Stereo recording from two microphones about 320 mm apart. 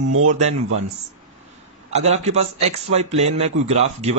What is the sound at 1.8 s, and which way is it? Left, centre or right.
A man's voice, right.